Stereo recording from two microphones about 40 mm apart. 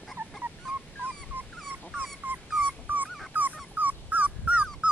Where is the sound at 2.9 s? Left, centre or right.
Right.